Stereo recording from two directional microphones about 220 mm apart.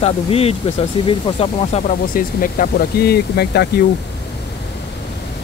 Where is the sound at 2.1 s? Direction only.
40° left (ahead or behind).